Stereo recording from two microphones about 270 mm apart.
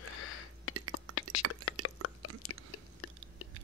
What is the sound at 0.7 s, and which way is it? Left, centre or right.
Whispering, right.